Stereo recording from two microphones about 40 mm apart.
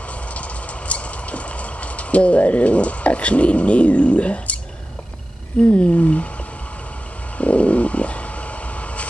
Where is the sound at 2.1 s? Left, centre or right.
Left.